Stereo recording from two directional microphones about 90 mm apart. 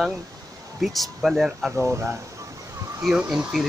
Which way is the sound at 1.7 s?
30° right (ahead or behind).